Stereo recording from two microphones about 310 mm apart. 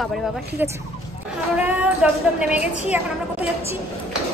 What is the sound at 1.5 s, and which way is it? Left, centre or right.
A woman's voice, centre.